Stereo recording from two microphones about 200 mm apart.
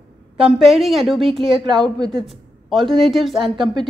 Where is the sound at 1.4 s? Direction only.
25° right (ahead or behind).